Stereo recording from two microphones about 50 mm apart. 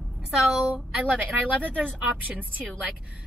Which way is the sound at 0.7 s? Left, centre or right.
Right.